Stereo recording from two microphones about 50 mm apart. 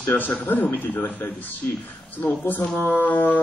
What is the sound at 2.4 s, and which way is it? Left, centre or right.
Speech, left.